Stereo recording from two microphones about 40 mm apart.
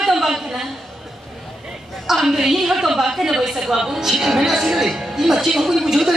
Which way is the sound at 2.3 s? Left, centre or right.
Centre.